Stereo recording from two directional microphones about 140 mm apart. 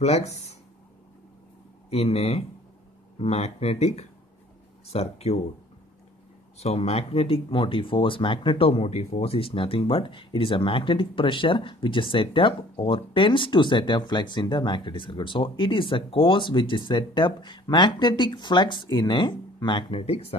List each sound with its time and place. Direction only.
0.0 s speech: 50° left (ahead or behind)
1.9 s speech: 45° left (ahead or behind)
6.6 s speech: 50° left (ahead or behind)